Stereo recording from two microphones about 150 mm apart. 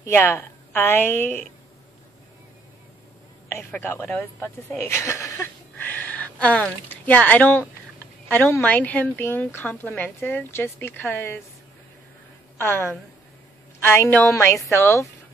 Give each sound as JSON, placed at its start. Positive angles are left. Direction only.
{"t": 0.0, "sound": "a woman's voice", "side_deg": 15}
{"t": 4.0, "sound": "a woman's voice", "side_deg": 10}
{"t": 12.5, "sound": "a woman's voice", "side_deg": 15}